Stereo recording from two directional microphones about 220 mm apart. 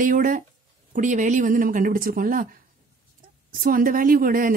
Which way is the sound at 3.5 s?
40° right (ahead or behind).